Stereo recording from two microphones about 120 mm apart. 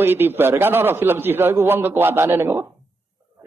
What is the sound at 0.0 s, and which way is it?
A man's voice, 20° right (ahead or behind).